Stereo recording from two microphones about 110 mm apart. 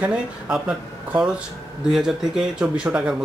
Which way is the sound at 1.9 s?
5° right (ahead or behind).